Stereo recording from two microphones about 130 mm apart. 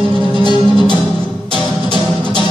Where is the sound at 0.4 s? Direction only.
35° left (ahead or behind).